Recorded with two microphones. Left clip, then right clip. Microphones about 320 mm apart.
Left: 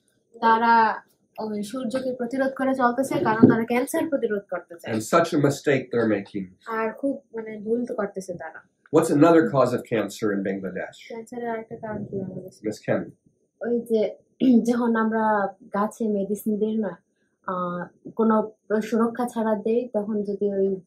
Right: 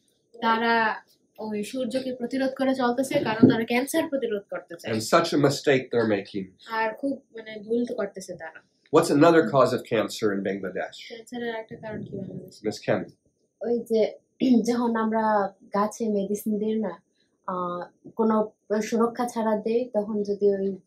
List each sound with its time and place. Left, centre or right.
0.5 s speech: centre
2.0 s speech: centre
13.6 s speech: right